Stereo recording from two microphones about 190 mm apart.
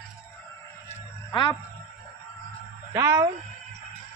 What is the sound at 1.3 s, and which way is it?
Speech, 25° left (ahead or behind).